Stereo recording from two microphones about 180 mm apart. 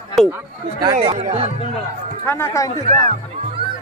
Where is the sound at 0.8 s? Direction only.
30° right (ahead or behind).